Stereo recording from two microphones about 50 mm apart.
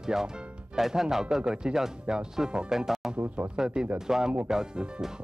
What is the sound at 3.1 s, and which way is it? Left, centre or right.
Speech, right.